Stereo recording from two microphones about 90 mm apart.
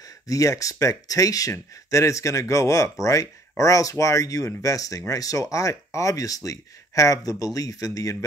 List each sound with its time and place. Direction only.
0.3 s speech: 40° left (ahead or behind)